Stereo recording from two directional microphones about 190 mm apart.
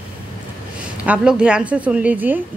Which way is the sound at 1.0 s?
5° right (ahead or behind).